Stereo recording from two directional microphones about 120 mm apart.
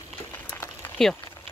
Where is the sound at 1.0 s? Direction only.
5° left (ahead or behind).